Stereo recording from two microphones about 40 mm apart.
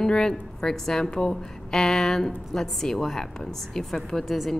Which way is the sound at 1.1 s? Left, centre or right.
Left.